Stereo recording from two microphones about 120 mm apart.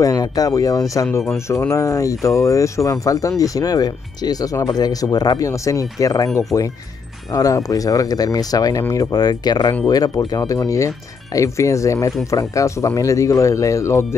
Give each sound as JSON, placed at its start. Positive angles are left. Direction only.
{"t": 0.0, "sound": "speech", "side_deg": 30}